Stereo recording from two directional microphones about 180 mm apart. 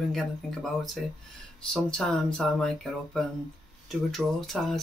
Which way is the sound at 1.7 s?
5° left (ahead or behind).